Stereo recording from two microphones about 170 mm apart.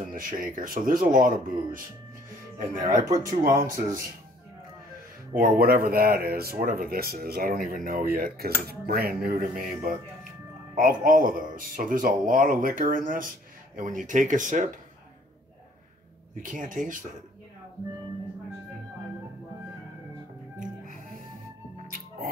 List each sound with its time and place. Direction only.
0.1 s speech: 55° right (ahead or behind)
3.1 s speech: 20° right (ahead or behind)
3.5 s speech: 55° right (ahead or behind)
5.3 s speech: 55° right (ahead or behind)
10.8 s speech: 55° right (ahead or behind)
16.3 s speech: 50° right (ahead or behind)